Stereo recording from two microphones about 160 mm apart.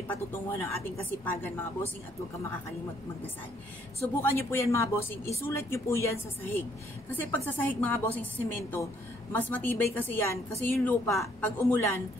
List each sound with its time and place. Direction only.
0.1 s a woman's voice: 15° left (ahead or behind)
4.0 s a woman's voice: 15° left (ahead or behind)
9.3 s a woman's voice: 10° left (ahead or behind)